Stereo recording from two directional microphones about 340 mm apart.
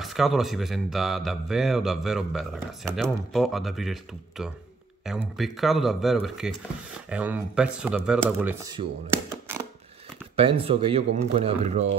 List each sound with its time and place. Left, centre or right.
0.0 s speech: centre